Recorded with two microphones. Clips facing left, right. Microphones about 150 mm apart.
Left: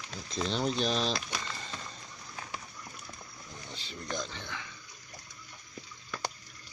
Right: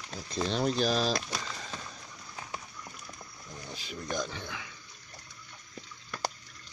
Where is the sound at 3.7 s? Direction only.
10° right (ahead or behind).